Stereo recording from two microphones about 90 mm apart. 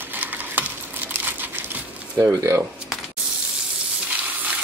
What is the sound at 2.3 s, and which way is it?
Speech, 35° right (ahead or behind).